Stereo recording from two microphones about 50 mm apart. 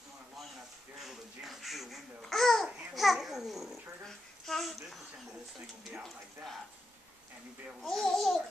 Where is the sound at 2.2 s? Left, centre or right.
Centre.